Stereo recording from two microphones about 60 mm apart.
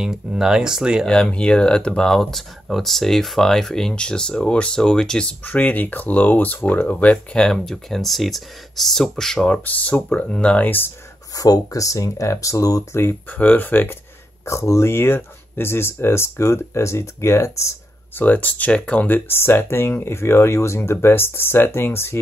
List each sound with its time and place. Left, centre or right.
0.0 s speech: centre
1.0 s speech: centre
5.4 s speech: left
7.3 s speech: centre
9.7 s speech: left
10.1 s speech: centre
10.6 s speech: left
11.3 s speech: left
13.3 s speech: left
14.4 s speech: left
18.1 s speech: left
19.0 s speech: left